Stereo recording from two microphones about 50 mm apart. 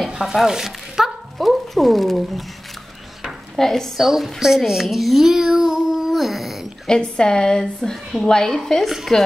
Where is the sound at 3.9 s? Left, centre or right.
Centre.